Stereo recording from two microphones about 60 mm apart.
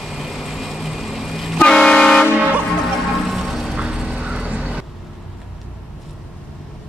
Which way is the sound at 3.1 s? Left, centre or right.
Centre.